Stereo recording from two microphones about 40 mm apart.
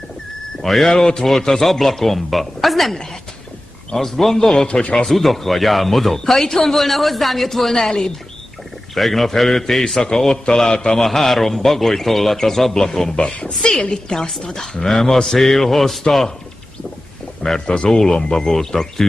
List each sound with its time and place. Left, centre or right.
0.6 s a man's voice: centre
0.9 s a man's voice: centre
8.9 s a man's voice: centre
10.0 s a man's voice: centre
13.2 s a woman's voice: left
13.5 s a man's voice: centre
17.4 s a man's voice: centre